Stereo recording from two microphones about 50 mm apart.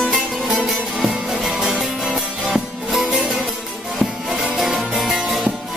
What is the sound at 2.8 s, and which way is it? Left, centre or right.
Music, centre.